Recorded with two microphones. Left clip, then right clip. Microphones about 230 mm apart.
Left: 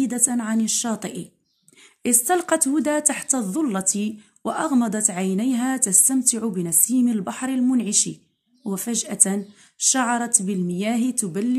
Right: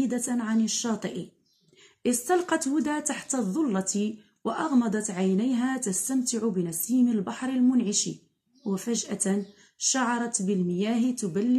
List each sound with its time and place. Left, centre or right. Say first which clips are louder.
0.0 s a woman's voice: left 5 dB; left